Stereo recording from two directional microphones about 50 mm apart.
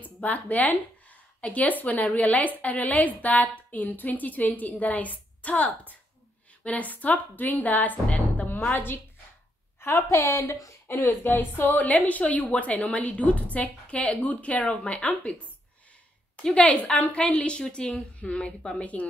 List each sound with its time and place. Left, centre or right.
0.0 s a woman's voice: left
8.7 s speech: left
9.8 s a woman's voice: left
10.9 s speech: left
11.8 s a woman's voice: left
16.5 s a woman's voice: left